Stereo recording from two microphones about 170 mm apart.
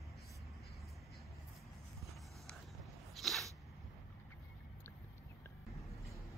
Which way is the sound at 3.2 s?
Centre (ahead or behind).